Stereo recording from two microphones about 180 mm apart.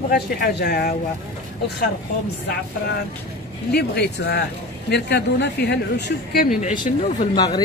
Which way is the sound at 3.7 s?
65° left (ahead or behind).